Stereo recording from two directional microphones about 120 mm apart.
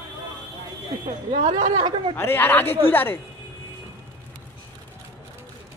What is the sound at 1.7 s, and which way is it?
Speech, 40° right (ahead or behind).